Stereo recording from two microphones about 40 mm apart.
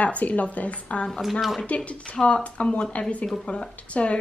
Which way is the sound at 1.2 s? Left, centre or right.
Centre.